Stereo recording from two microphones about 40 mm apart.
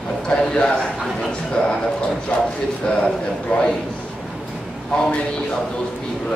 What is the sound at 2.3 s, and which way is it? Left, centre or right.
Speech, left.